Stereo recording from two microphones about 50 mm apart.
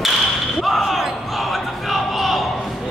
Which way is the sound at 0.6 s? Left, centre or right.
Centre.